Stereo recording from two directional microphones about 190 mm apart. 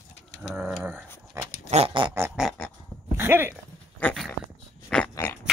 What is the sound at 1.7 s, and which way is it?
Pig, 30° right (ahead or behind).